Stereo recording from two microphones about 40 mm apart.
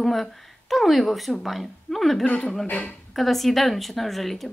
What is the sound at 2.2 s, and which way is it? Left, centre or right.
Speech, left.